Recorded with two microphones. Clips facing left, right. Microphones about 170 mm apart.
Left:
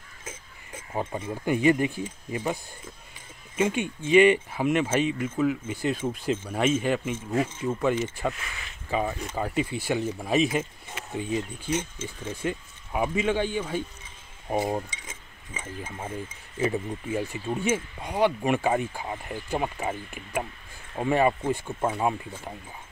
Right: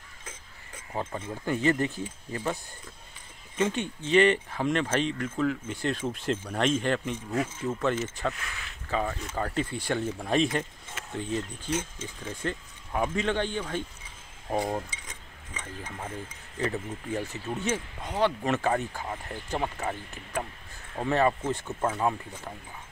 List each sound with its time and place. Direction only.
0.7 s a sound: 15° left (ahead or behind)
1.3 s speech: 15° left (ahead or behind)
14.9 s chink: 5° left (ahead or behind)
16.6 s speech: 10° left (ahead or behind)